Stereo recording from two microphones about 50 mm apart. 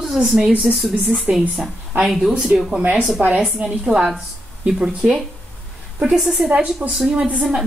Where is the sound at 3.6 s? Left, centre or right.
Right.